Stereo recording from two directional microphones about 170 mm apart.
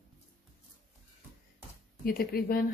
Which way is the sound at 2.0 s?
60° left (ahead or behind).